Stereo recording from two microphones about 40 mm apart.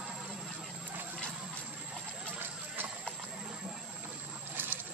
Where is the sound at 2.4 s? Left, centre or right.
Right.